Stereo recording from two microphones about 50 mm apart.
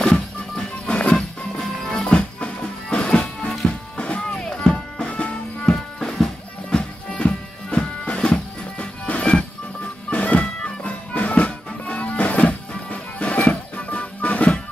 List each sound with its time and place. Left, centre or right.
0.0 s music: centre
1.1 s music: centre
2.0 s music: left
5.9 s music: centre; by 14.6 s left